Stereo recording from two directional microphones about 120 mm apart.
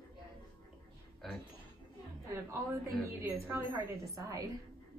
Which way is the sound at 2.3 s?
25° right (ahead or behind).